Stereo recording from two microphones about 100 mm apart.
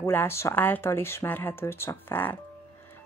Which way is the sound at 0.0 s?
25° left (ahead or behind).